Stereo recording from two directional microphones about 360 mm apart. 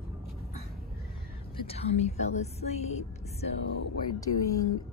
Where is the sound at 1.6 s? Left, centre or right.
Centre.